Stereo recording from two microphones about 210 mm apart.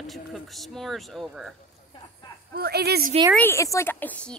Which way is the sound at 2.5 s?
50° right (ahead or behind).